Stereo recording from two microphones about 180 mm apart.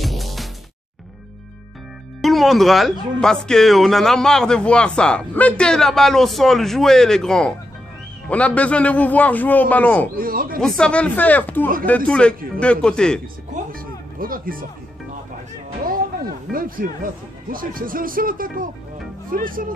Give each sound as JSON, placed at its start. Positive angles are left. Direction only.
{"t": 0.0, "sound": "music", "side_deg": 0}
{"t": 2.2, "sound": "a man's voice", "side_deg": 0}
{"t": 10.1, "sound": "speech", "side_deg": -55}
{"t": 10.6, "sound": "a man's voice", "side_deg": 5}
{"t": 13.7, "sound": "speech", "side_deg": -50}
{"t": 15.8, "sound": "speech", "side_deg": -50}